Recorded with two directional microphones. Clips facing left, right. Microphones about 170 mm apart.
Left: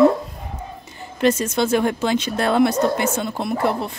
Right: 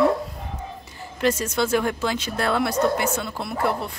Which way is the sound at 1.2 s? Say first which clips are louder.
Left 4 dB; 20° left (ahead or behind).